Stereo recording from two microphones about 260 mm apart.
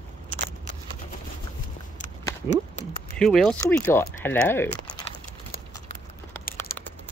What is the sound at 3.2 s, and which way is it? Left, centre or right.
Speech, centre.